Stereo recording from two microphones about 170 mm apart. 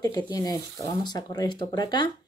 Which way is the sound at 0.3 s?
25° left (ahead or behind).